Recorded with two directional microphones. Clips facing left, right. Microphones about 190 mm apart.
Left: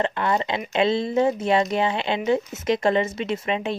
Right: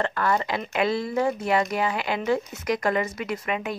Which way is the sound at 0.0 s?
20° left (ahead or behind).